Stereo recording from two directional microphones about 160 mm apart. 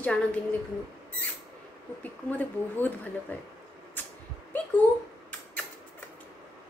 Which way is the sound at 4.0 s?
10° left (ahead or behind).